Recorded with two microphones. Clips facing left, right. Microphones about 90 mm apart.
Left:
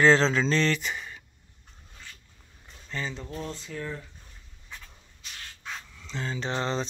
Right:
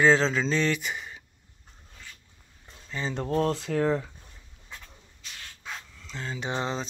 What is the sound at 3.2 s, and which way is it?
Speech, 75° right (ahead or behind).